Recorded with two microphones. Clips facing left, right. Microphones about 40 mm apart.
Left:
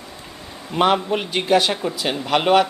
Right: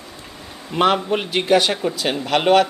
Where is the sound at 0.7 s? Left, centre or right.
Centre.